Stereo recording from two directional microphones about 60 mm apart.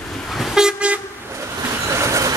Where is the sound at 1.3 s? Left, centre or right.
Right.